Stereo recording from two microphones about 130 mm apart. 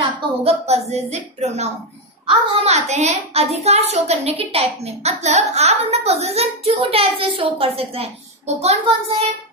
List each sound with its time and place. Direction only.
0.2 s a child's voice: 50° right (ahead or behind)